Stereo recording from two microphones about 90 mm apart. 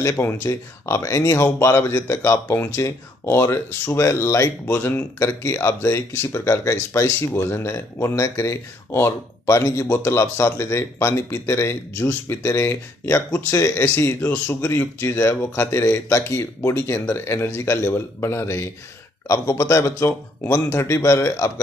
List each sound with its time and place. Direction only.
0.0 s speech: 30° left (ahead or behind)